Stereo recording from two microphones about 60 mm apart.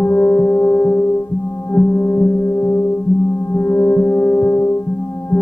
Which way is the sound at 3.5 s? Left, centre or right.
Left.